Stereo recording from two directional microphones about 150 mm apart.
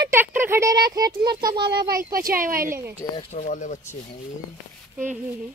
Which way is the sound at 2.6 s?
20° right (ahead or behind).